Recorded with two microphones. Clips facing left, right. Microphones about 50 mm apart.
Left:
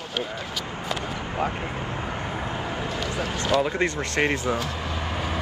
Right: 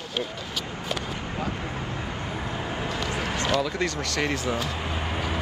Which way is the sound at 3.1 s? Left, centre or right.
Right.